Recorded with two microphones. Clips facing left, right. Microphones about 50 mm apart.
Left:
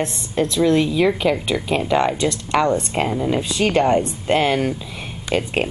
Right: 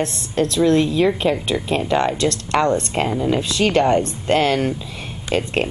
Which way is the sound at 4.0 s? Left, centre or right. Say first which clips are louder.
Right 1 dB; centre.